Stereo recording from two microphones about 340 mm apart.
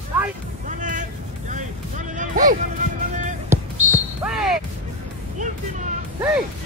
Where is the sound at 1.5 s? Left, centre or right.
Right.